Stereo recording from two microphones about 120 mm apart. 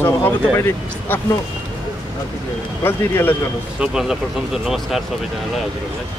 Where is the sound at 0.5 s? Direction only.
20° left (ahead or behind).